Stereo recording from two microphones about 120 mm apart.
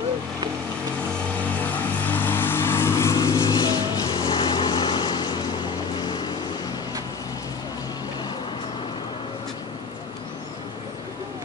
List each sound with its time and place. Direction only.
2.0 s vehicle: 15° left (ahead or behind); by 6.3 s 35° left (ahead or behind)